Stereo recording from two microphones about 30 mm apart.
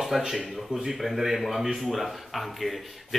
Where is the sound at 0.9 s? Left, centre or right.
Centre.